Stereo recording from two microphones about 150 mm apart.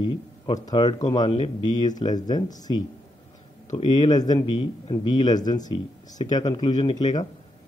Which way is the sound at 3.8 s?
30° left (ahead or behind).